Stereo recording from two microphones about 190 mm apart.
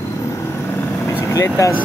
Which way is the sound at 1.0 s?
15° left (ahead or behind).